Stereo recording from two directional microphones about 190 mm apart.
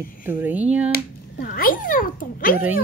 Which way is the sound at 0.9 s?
50° left (ahead or behind).